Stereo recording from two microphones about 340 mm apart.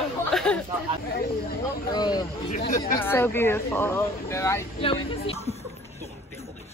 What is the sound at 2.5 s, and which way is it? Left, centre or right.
Chatter, left.